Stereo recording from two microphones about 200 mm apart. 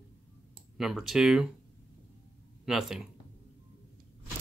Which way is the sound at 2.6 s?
Centre (ahead or behind).